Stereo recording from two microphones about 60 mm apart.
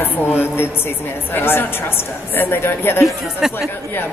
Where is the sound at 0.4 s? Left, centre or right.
Left.